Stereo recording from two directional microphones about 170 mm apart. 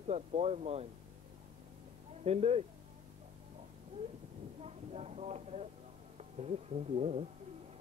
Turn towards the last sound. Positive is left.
turn(degrees=-40)  # may be behind; listen again after turning